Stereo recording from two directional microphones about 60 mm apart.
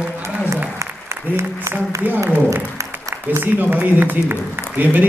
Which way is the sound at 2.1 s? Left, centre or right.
Right.